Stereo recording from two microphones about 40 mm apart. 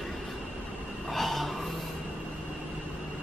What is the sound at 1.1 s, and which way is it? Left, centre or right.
Snort, centre.